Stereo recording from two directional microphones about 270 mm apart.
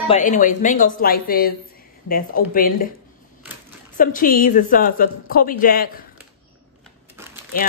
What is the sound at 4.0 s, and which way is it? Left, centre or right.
Speech, left.